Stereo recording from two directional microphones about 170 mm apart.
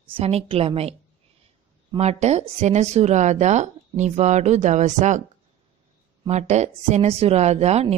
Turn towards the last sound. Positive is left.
turn(degrees=-40)  # may be behind; listen again after turning